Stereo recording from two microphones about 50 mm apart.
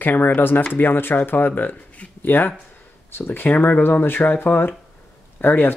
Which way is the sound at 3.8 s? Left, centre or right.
Left.